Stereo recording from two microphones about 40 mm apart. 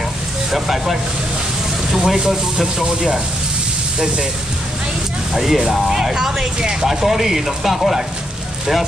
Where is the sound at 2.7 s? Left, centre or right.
Centre.